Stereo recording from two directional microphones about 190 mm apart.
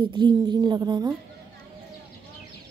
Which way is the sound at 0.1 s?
25° right (ahead or behind).